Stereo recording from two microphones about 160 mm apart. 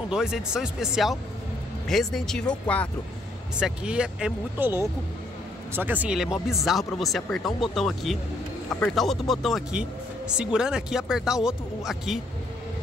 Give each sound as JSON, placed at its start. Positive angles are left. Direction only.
{"t": 0.1, "sound": "speech", "side_deg": -5}
{"t": 3.5, "sound": "speech", "side_deg": -5}